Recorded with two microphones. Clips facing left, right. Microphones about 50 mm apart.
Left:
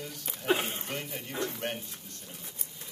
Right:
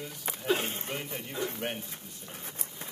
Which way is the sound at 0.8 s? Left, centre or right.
Centre.